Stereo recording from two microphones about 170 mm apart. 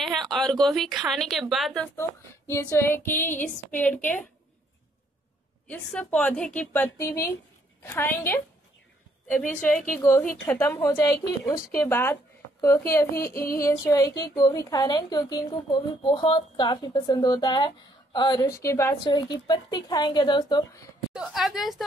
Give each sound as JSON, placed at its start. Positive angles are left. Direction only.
{"t": 0.0, "sound": "a woman's voice", "side_deg": 0}
{"t": 2.0, "sound": "a woman's voice", "side_deg": 15}
{"t": 5.7, "sound": "a woman's voice", "side_deg": 10}
{"t": 13.1, "sound": "a sound", "side_deg": 60}
{"t": 13.6, "sound": "a woman's voice", "side_deg": 20}
{"t": 21.1, "sound": "a woman's voice", "side_deg": -5}